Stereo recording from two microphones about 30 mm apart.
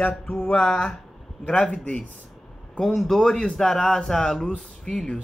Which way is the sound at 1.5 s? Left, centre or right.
Left.